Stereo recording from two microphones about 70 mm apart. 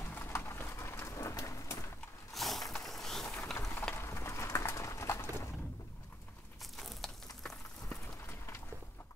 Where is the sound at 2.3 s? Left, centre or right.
Centre.